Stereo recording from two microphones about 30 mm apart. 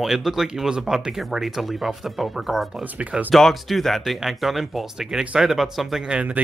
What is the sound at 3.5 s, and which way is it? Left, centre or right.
Speech, centre.